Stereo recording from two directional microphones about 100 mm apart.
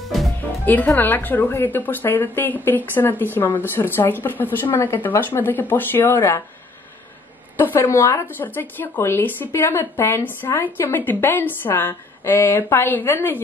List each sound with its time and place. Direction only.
0.7 s speech: 20° left (ahead or behind)
7.5 s speech: 25° left (ahead or behind)